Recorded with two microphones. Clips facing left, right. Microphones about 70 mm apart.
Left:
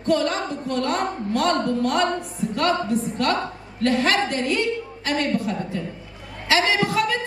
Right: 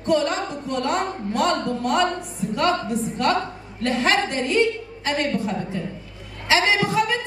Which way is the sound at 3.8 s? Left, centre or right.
Right.